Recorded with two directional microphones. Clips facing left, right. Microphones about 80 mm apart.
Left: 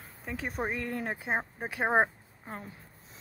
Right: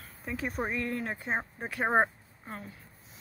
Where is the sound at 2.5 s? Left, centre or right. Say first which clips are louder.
Left 1 dB; left.